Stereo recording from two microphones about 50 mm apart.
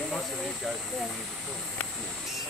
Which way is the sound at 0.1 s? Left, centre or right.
Centre.